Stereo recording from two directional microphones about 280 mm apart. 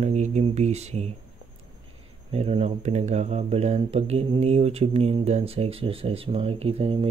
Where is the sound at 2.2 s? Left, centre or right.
Right.